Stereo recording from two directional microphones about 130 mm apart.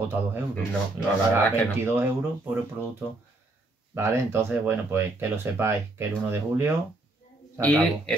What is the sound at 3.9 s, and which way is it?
Speech, 20° right (ahead or behind).